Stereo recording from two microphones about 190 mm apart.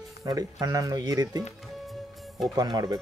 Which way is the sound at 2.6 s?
20° right (ahead or behind).